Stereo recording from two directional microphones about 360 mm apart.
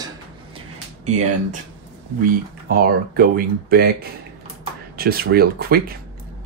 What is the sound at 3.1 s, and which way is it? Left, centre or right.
Speech, right.